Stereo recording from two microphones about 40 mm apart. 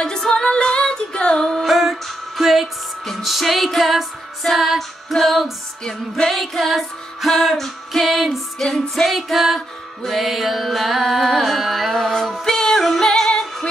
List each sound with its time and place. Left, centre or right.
0.0 s female singing: centre
1.7 s music: centre
5.9 s music: centre
8.6 s music: centre
9.0 s music: centre
12.1 s music: centre